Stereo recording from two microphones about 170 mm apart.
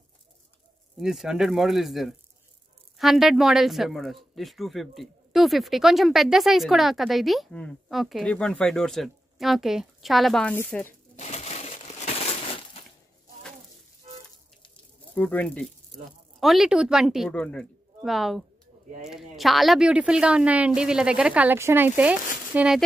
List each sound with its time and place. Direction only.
0.9 s speech: centre (ahead or behind)
11.1 s crushing: 40° left (ahead or behind)
15.1 s speech: 10° left (ahead or behind); by 22.8 s 10° right (ahead or behind)